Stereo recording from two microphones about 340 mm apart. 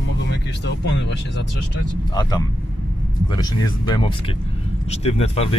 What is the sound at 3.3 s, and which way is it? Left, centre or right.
Speech, centre.